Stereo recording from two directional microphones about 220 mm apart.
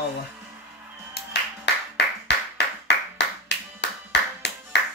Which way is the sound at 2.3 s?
50° left (ahead or behind).